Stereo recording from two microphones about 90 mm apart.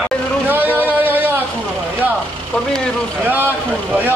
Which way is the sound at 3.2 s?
20° right (ahead or behind).